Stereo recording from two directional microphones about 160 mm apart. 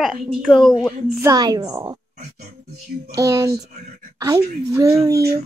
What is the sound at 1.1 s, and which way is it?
Speech, 20° right (ahead or behind).